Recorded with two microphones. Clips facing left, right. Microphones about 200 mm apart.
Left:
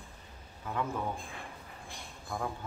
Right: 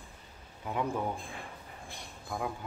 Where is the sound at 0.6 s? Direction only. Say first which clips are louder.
Right 2 dB; 15° right (ahead or behind).